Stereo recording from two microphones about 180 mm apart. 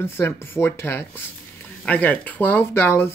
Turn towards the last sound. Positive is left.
turn(degrees=10)  # may be behind; listen again after turning